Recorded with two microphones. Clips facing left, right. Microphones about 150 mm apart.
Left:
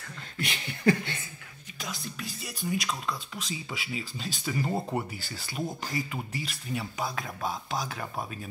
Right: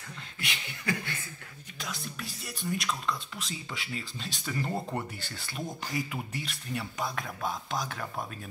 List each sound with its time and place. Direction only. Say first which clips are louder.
0.4 s chuckle: left 7 dB; 35° left (ahead or behind)
1.8 s speech: left 1 dB; centre (ahead or behind)